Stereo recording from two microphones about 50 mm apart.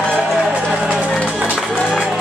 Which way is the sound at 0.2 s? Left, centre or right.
Centre.